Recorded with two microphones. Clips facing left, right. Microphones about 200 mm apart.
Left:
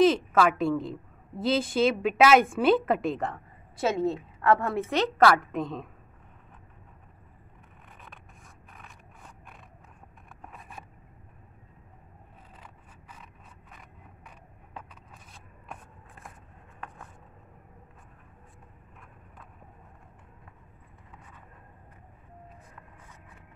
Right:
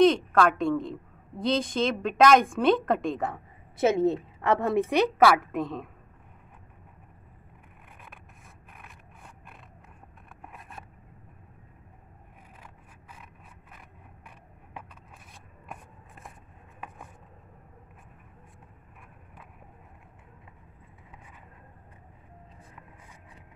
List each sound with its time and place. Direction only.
0.0 s a woman's voice: 5° left (ahead or behind)
4.4 s a woman's voice: 20° right (ahead or behind); by 5.9 s centre (ahead or behind)
8.7 s scrape: 5° right (ahead or behind)
10.4 s vehicle: centre (ahead or behind)
13.2 s vehicle: 5° right (ahead or behind)